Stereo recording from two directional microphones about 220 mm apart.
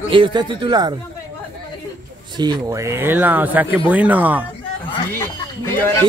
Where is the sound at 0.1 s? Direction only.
20° right (ahead or behind).